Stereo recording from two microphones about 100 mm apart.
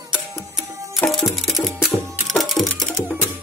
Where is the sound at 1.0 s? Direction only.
Centre (ahead or behind).